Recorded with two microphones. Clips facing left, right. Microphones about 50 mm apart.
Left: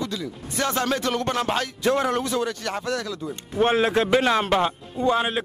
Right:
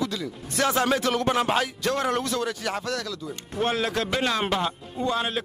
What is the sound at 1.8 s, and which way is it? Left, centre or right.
Speech, centre.